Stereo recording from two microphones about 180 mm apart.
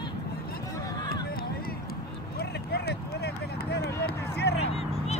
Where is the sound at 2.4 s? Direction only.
65° left (ahead or behind).